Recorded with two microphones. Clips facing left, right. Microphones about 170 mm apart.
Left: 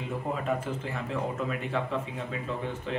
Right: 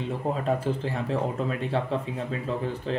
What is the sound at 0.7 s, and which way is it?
Speech, 35° right (ahead or behind).